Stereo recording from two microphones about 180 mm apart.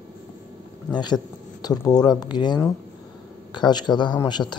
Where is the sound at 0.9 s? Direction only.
25° left (ahead or behind).